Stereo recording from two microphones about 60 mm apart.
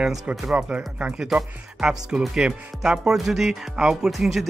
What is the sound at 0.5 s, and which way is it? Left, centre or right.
Speech, right.